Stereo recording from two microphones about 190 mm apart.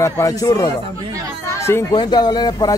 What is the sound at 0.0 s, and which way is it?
A man's voice, 15° left (ahead or behind).